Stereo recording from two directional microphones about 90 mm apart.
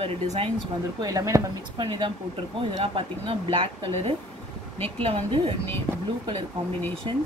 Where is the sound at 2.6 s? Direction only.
80° right.